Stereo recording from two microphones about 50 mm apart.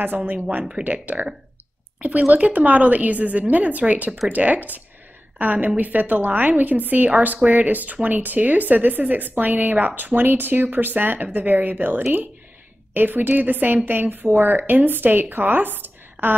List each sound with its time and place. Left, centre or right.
0.0 s speech: right